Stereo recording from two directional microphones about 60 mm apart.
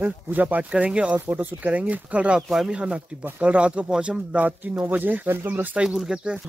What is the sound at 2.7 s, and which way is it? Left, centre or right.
Speech, centre.